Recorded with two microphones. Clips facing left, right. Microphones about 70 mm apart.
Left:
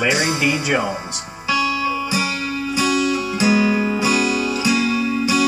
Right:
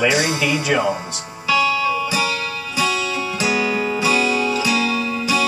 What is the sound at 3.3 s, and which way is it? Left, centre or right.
Music, left.